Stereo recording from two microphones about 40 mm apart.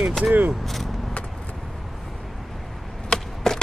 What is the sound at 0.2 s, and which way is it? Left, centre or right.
Speech, right.